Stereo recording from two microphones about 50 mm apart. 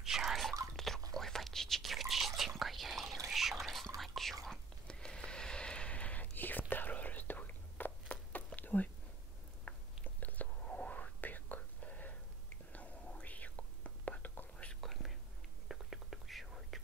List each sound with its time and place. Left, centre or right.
0.0 s drip: centre
0.7 s whispering: centre
3.3 s a sound: centre
4.0 s whispering: centre
4.8 s a sound: centre
6.3 s whispering: left
8.5 s a sound: left
9.7 s chewing: left
10.0 s whispering: left
10.6 s whispering: left
10.9 s whispering: left
14.8 s whispering: centre